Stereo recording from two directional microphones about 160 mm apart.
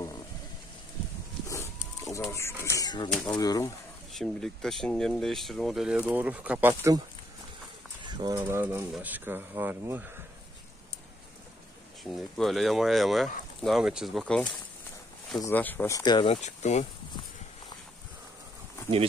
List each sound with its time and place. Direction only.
1.5 s a sound: 20° left (ahead or behind)
2.3 s speech: 15° left (ahead or behind)
3.1 s speech: 5° left (ahead or behind)
3.3 s speech: 25° left (ahead or behind)
4.1 s speech: centre (ahead or behind); by 7.0 s 15° right (ahead or behind)
8.0 s bird: 30° right (ahead or behind)
8.5 s speech: 15° right (ahead or behind)
12.0 s speech: centre (ahead or behind)
16.0 s speech: 30° left (ahead or behind)
16.3 s speech: 45° left (ahead or behind)